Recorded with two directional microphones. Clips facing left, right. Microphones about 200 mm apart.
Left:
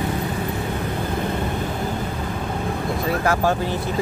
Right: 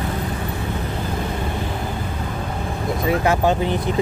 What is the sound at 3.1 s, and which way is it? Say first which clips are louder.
Speech: right 3 dB; 20° right (ahead or behind).